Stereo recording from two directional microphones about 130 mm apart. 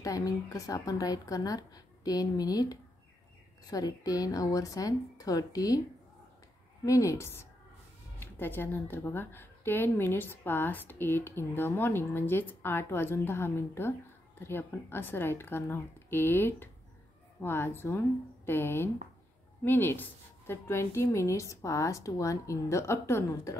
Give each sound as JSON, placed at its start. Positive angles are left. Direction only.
{"t": 0.0, "sound": "a woman's voice", "side_deg": 25}
{"t": 6.9, "sound": "a woman's voice", "side_deg": 25}